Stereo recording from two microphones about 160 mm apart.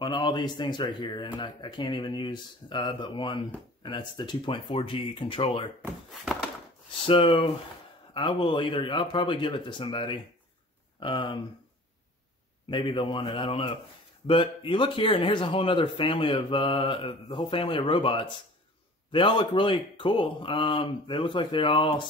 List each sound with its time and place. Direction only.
0.0 s speech: 30° left (ahead or behind)
7.1 s speech: 35° left (ahead or behind)
12.6 s speech: 30° left (ahead or behind)